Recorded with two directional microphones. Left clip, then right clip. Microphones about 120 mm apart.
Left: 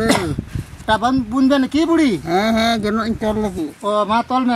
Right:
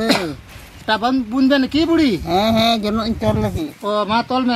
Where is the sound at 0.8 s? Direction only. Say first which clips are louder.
Left 1 dB; 5° left (ahead or behind).